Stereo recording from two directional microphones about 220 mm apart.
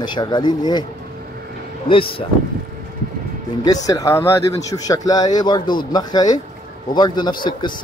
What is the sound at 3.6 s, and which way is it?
A man's voice, 15° left (ahead or behind).